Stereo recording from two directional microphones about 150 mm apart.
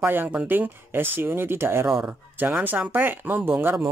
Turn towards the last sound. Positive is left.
turn(degrees=-15)  # may be behind; listen again after turning